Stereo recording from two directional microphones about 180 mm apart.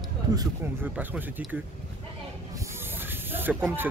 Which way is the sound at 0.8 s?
10° right (ahead or behind).